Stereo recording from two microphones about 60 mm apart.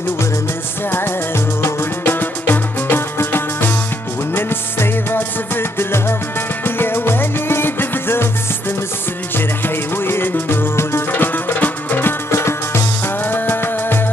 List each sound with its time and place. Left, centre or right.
0.9 s music: left
10.0 s music: left
11.1 s music: left
12.3 s music: left
13.2 s music: left